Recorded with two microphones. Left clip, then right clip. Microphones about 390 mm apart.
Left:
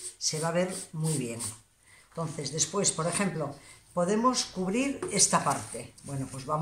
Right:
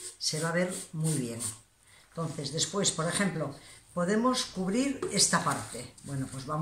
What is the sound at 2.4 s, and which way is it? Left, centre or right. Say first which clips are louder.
A woman's voice: left 1 dB; centre.